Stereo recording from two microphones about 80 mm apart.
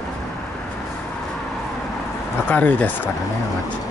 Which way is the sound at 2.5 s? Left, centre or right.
Centre.